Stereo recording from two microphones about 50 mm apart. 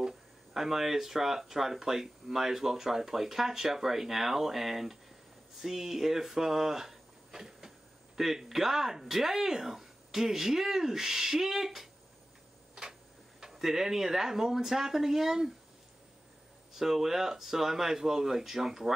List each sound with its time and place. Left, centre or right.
0.0 s speech: centre
12.8 s a sound: centre
13.4 s speech: centre
16.7 s speech: centre